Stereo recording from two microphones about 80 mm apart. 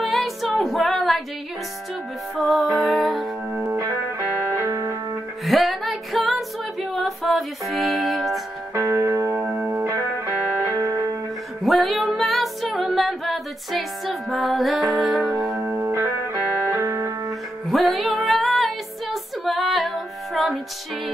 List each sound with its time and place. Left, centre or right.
0.0 s music: centre
2.3 s music: centre
3.5 s music: right
4.6 s music: right
5.4 s music: centre
8.7 s music: right
9.4 s music: right
10.3 s music: centre
10.8 s music: right
11.6 s music: centre
15.5 s music: right
17.6 s music: centre